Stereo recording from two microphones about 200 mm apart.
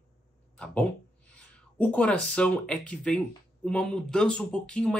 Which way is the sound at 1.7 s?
5° left (ahead or behind).